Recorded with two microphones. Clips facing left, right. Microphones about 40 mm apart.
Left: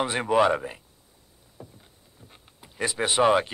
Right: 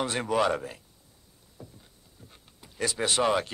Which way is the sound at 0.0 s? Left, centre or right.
Left.